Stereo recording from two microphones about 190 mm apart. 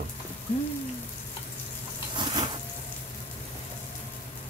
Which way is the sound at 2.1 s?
25° right (ahead or behind).